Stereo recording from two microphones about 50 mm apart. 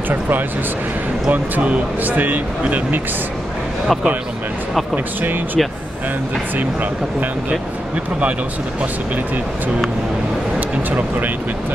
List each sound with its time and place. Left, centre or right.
1.3 s speech: right
4.9 s speech: right
10.9 s speech: right